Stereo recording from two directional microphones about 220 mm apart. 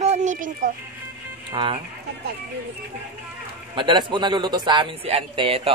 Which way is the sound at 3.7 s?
20° right (ahead or behind).